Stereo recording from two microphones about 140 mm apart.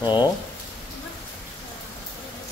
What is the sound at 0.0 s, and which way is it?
Speech, 30° left (ahead or behind).